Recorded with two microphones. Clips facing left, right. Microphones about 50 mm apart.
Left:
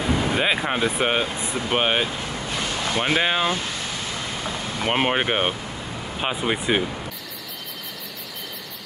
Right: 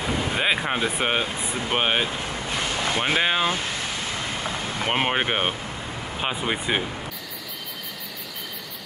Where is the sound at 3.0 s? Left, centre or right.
Centre.